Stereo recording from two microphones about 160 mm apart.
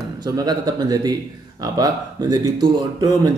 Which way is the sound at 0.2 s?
25° right (ahead or behind).